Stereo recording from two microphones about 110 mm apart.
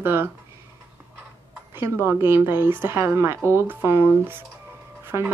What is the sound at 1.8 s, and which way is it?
A woman's voice, 20° right (ahead or behind).